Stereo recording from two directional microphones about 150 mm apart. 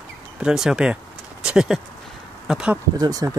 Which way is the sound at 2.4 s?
5° right (ahead or behind).